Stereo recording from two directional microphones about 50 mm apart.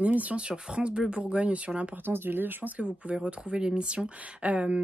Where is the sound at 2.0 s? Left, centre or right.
Right.